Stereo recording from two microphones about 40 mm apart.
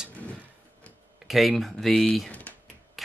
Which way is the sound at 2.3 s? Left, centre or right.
Left.